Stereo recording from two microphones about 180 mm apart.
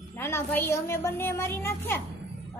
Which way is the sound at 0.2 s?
10° left (ahead or behind).